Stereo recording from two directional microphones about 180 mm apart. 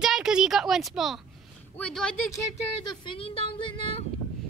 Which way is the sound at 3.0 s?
30° left (ahead or behind).